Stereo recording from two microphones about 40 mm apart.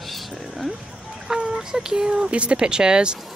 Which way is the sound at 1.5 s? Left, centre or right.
Centre.